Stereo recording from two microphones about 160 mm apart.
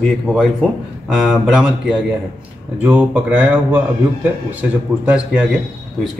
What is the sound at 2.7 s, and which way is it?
Speech, 10° right (ahead or behind).